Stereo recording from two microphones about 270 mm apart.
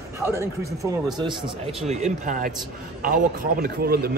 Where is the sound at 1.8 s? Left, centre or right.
Right.